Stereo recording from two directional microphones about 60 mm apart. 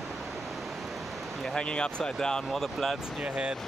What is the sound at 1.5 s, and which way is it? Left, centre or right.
Speech, centre.